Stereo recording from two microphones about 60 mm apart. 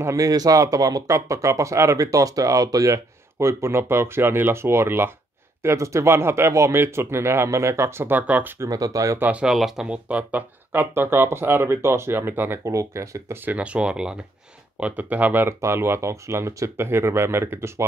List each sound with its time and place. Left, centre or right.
0.0 s speech: right
3.3 s speech: right
5.6 s speech: right
8.6 s speech: right
9.2 s speech: right
9.5 s speech: centre
9.8 s speech: right
10.7 s speech: right
12.6 s speech: right
13.5 s speech: right
14.8 s speech: right
15.4 s speech: right